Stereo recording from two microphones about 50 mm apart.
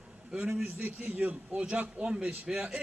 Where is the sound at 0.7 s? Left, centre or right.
Right.